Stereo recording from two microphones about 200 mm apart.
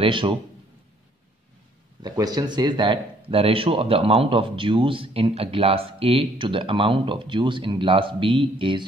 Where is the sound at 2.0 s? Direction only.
20° right (ahead or behind).